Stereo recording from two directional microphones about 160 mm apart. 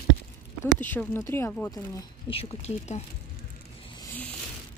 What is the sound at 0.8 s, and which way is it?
Speech, 15° left (ahead or behind).